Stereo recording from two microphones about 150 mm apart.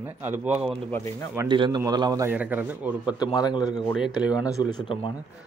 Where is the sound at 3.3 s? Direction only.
25° left (ahead or behind).